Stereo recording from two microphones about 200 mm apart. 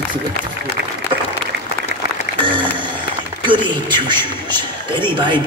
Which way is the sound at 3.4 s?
25° right (ahead or behind).